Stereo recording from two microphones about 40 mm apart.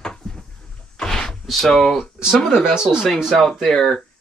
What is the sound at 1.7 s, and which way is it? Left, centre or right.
Speech, centre.